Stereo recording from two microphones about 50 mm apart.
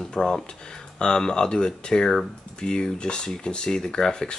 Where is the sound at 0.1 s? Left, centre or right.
Centre.